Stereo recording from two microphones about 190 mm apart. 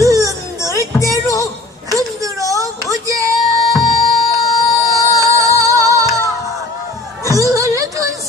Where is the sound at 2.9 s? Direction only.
15° right (ahead or behind).